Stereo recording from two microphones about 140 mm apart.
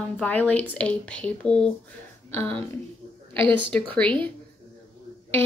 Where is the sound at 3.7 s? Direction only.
10° left (ahead or behind).